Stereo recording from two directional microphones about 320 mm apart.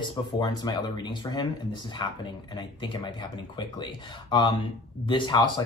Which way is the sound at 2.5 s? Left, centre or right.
Centre.